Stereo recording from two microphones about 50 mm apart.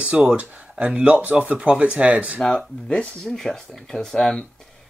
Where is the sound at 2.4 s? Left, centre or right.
Centre.